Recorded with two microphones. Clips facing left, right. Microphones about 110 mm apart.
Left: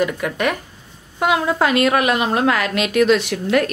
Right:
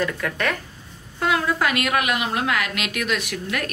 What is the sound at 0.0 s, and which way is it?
Speech, 15° left (ahead or behind).